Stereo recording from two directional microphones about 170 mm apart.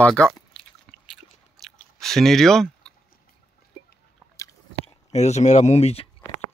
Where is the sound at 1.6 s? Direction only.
Centre (ahead or behind).